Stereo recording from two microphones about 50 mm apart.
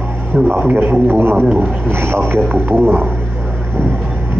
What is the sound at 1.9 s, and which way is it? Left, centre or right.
Speech, right.